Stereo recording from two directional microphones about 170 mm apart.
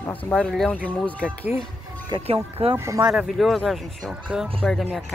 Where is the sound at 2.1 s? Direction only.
35° right (ahead or behind).